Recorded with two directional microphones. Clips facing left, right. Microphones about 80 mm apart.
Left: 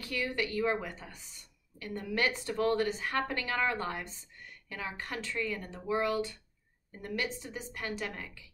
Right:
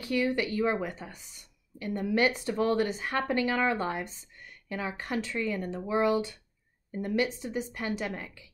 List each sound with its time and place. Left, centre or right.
0.0 s speech: right